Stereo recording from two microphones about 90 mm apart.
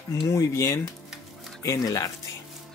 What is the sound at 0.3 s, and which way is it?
Speech, 35° left (ahead or behind).